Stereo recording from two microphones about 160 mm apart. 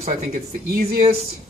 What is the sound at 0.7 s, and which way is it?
Speech, 65° right (ahead or behind).